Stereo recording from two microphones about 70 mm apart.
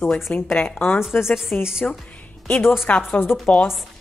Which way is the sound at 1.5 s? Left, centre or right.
Centre.